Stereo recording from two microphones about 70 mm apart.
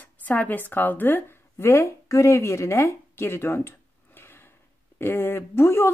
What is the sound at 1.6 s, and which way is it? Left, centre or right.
A woman's voice, left.